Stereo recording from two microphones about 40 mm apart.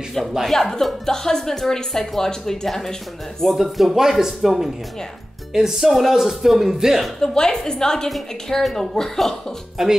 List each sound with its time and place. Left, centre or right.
0.5 s speech: centre
3.5 s speech: centre
7.2 s speech: centre
9.8 s speech: centre